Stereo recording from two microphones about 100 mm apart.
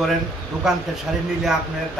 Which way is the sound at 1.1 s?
5° right (ahead or behind).